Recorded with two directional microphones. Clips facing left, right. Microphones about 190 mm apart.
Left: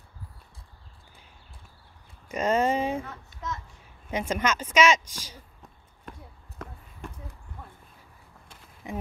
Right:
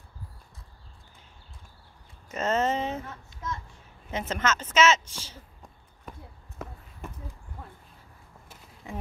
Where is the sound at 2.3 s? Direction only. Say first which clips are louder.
Left 2 dB; 10° left (ahead or behind).